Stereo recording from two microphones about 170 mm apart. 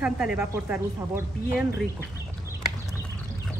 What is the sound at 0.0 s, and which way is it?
Speech, 5° right (ahead or behind).